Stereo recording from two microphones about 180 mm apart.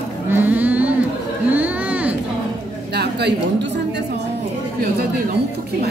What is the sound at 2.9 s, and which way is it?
Speech, 70° right (ahead or behind).